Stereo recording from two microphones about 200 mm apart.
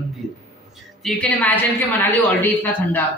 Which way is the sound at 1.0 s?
5° left (ahead or behind).